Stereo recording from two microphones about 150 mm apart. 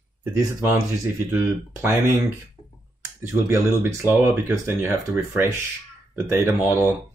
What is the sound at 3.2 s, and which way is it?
Speech, 20° right (ahead or behind).